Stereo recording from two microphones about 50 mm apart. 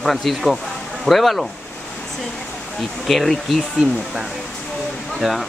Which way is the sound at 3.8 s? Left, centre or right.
Centre.